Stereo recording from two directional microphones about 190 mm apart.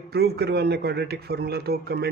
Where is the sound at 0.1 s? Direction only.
55° right (ahead or behind).